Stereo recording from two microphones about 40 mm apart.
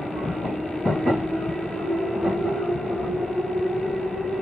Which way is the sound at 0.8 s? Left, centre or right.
Left.